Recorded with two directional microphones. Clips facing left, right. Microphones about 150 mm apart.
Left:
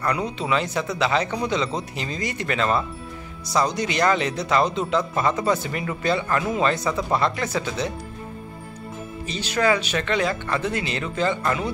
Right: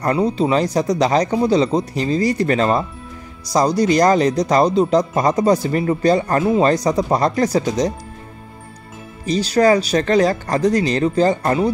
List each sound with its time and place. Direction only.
0.0 s speech: 35° right (ahead or behind)
9.2 s speech: 35° right (ahead or behind)